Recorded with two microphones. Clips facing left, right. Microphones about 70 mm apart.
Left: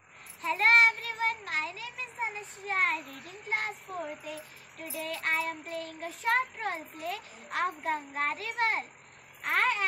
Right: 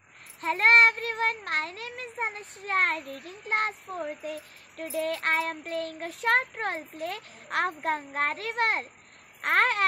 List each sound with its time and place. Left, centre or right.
0.4 s a child's voice: right